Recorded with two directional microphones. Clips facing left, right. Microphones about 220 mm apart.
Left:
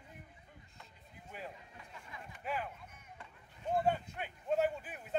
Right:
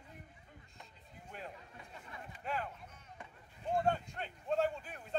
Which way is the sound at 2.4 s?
5° left (ahead or behind).